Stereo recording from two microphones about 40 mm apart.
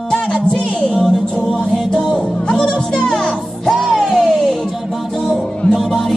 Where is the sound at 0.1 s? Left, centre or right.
Left.